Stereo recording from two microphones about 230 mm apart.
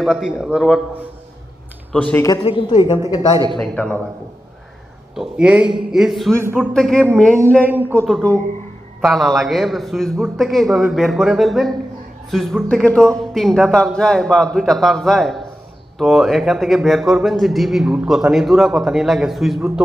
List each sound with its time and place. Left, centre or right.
0.0 s a man's voice: centre
1.9 s a man's voice: centre
2.2 s a man's voice: centre
3.5 s a man's voice: centre
5.1 s a man's voice: centre
7.7 s a man's voice: centre